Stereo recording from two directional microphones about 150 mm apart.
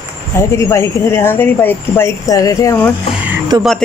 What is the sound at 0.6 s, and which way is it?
Speech, 20° left (ahead or behind).